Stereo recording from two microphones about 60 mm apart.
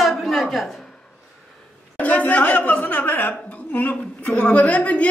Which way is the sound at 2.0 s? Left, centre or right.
Left.